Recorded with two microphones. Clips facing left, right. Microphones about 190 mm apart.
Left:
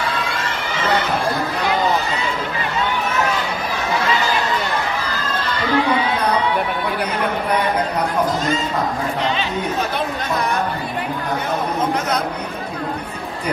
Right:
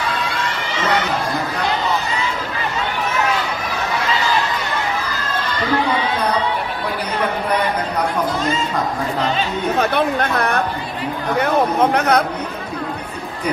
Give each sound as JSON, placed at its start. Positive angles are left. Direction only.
{"t": 9.8, "sound": "speech", "side_deg": -60}